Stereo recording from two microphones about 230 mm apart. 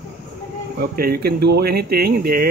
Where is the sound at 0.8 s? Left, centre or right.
Right.